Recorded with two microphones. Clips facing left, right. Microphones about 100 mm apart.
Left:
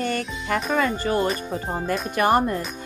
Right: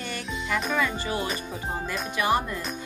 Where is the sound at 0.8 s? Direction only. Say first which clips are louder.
Left 5 dB; 45° left (ahead or behind).